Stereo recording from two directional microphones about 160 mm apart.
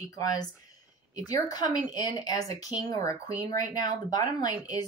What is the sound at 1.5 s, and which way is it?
Speech, 25° left (ahead or behind).